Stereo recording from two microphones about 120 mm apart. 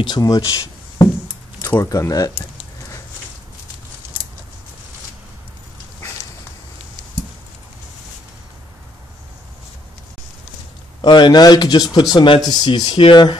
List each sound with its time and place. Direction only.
0.0 s speech: 30° left (ahead or behind)
11.0 s speech: 40° left (ahead or behind)